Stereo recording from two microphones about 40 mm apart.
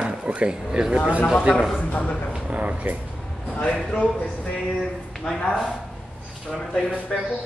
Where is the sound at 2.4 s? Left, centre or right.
Right.